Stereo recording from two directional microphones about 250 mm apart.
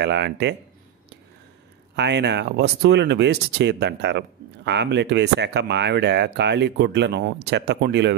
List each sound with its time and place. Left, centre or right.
0.0 s speech: right
2.0 s speech: right